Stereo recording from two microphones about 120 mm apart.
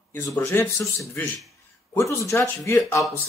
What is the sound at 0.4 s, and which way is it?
A man's voice, 20° left (ahead or behind).